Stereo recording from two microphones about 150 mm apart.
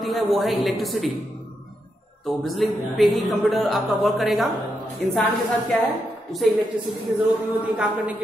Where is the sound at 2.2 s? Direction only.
Centre (ahead or behind).